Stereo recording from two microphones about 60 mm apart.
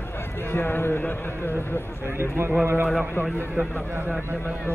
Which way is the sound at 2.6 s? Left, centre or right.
Right.